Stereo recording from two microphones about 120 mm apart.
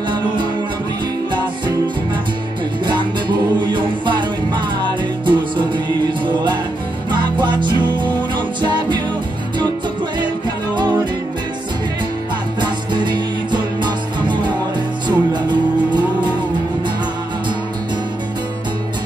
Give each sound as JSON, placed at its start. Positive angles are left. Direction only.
{"t": 2.9, "sound": "music", "side_deg": -40}
{"t": 12.5, "sound": "music", "side_deg": -40}